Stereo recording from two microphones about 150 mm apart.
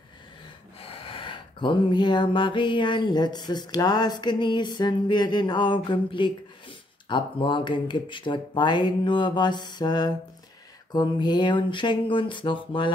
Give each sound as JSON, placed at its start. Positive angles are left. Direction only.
{"t": 0.7, "sound": "speech", "side_deg": 40}